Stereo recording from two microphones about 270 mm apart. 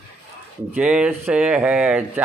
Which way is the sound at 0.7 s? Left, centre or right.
Centre.